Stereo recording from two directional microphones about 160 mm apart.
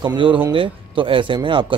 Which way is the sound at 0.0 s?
30° right (ahead or behind).